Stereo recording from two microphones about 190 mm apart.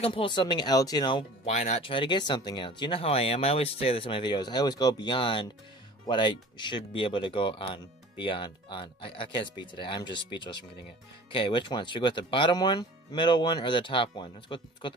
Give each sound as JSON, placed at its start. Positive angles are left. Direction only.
{"t": 0.0, "sound": "speech", "side_deg": 30}